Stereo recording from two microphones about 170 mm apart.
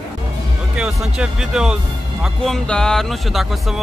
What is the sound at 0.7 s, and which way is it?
Speech, 5° right (ahead or behind).